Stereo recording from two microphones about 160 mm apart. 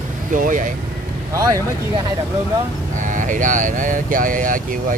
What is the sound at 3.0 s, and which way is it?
Speech, 55° right (ahead or behind).